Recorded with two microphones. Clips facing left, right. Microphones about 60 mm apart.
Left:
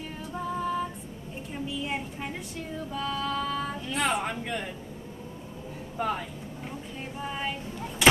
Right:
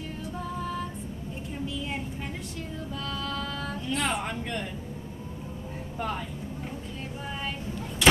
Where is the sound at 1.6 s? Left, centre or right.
Centre.